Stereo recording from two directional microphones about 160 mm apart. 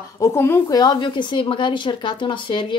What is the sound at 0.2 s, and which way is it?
A woman's voice, 15° left (ahead or behind).